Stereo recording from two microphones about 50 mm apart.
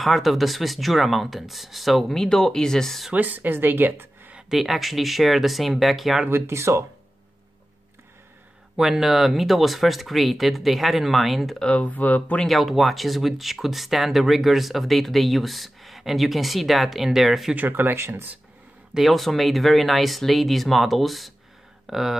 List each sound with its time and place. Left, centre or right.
0.0 s speech: centre
3.2 s speech: right
4.5 s speech: centre
6.3 s speech: right
8.7 s speech: centre
11.8 s speech: left
12.4 s speech: centre
17.6 s speech: right
17.9 s speech: right
18.9 s speech: centre